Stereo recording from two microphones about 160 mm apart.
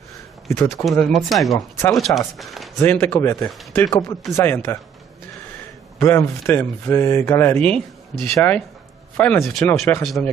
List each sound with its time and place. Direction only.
0.5 s speech: 15° left (ahead or behind)
0.8 s speech: centre (ahead or behind)
2.8 s speech: 15° left (ahead or behind)
5.9 s speech: 15° left (ahead or behind)
7.7 s speech: 5° left (ahead or behind)
9.4 s speech: centre (ahead or behind)
9.8 s speech: 10° left (ahead or behind)